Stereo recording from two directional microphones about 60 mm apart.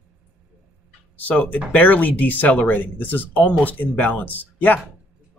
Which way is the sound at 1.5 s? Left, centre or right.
Left.